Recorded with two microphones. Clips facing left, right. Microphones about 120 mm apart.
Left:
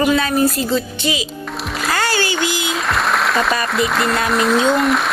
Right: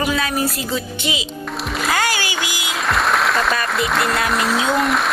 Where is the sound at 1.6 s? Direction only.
Centre (ahead or behind).